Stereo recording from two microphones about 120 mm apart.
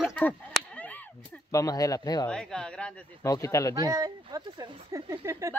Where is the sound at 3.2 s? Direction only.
25° left (ahead or behind).